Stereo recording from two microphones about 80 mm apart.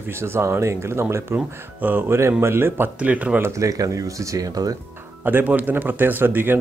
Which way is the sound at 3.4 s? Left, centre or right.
Right.